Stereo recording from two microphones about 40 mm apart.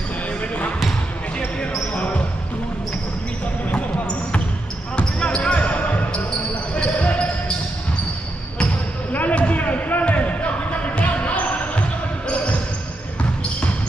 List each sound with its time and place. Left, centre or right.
2.0 s basketball bounce: left
4.9 s basketball bounce: left
9.1 s basketball bounce: left